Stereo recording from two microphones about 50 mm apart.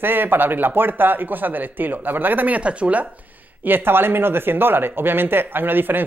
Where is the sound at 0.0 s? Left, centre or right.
Right.